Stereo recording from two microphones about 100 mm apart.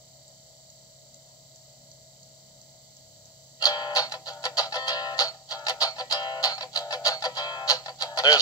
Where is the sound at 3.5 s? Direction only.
40° left (ahead or behind).